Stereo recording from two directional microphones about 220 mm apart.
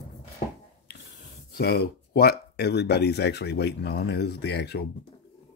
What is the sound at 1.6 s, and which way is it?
Speech, 45° left (ahead or behind).